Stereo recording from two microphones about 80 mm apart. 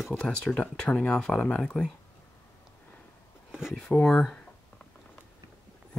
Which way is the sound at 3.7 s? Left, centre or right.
Centre.